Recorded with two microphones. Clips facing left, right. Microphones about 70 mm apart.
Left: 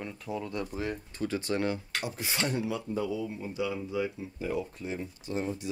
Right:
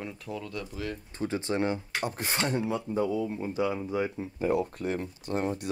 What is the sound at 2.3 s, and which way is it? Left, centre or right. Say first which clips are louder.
Speech: right 2 dB; right.